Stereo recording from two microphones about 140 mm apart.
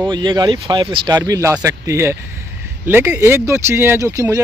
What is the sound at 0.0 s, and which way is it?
Speech, 35° right (ahead or behind).